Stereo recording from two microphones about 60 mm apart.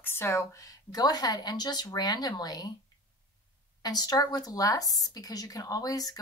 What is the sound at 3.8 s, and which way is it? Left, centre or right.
A woman's voice, left.